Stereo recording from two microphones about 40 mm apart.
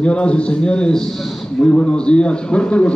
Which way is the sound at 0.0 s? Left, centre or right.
Left.